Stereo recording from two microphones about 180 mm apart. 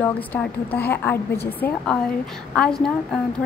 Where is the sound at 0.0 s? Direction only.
10° left (ahead or behind).